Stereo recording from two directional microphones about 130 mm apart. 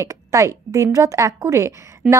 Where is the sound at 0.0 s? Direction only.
25° right (ahead or behind).